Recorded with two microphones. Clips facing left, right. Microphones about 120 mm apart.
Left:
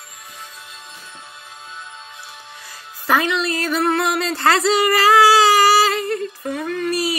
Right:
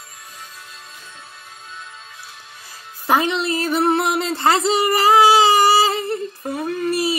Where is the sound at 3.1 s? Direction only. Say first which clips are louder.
Right 1 dB; 25° right (ahead or behind).